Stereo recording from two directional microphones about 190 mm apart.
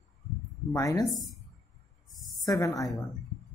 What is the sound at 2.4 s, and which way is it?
Speech, 20° left (ahead or behind).